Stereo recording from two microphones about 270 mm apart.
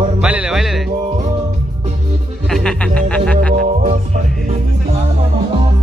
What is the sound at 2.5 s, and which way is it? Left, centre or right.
Music, centre.